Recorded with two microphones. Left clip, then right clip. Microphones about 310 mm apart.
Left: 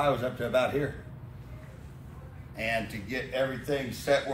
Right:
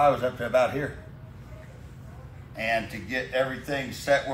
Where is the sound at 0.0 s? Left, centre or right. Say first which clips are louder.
Right 5 dB; centre.